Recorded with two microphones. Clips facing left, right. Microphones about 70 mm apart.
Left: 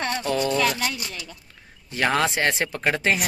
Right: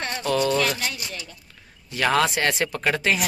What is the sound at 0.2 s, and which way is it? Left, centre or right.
Speech, left.